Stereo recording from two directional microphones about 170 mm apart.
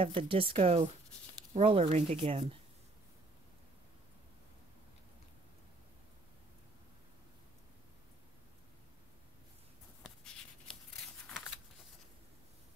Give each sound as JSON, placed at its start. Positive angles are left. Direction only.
{"t": 0.0, "sound": "speech", "side_deg": -35}
{"t": 10.0, "sound": "writing", "side_deg": 0}